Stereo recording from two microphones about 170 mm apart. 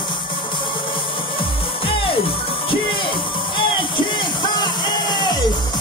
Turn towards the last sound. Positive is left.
turn(degrees=25)  # may be behind; listen again after turning